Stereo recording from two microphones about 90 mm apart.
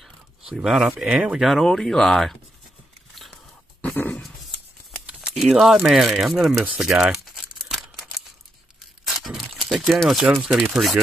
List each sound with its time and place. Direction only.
0.5 s speech: 5° right (ahead or behind)
1.1 s speech: 15° right (ahead or behind)
1.4 s speech: centre (ahead or behind)
3.8 s a sound: 15° left (ahead or behind)
5.0 s crumpling: 10° right (ahead or behind)
5.4 s speech: centre (ahead or behind)
6.6 s crumpling: 10° right (ahead or behind)
9.1 s a sound: 5° right (ahead or behind)
10.7 s speech: 5° right (ahead or behind)